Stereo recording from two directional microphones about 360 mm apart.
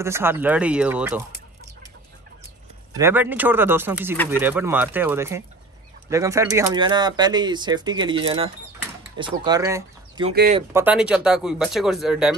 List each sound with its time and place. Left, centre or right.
0.0 s speech: centre
2.9 s speech: centre
10.3 s speech: right
10.7 s speech: centre